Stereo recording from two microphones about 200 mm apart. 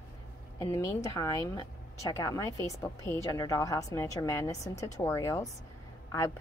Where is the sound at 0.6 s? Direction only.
15° left (ahead or behind).